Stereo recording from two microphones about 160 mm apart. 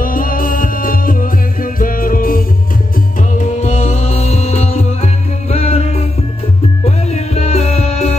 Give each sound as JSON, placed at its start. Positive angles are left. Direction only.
{"t": 0.0, "sound": "music", "side_deg": 60}
{"t": 3.2, "sound": "music", "side_deg": 50}
{"t": 7.1, "sound": "music", "side_deg": 45}